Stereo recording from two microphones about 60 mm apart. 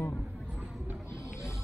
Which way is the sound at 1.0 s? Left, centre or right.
Left.